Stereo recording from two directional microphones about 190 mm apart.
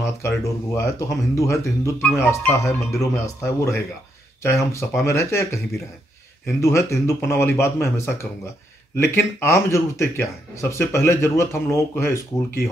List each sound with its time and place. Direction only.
0.7 s speech: 15° left (ahead or behind)